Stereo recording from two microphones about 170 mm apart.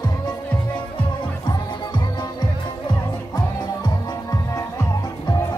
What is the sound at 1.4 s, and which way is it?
Music, 25° left (ahead or behind).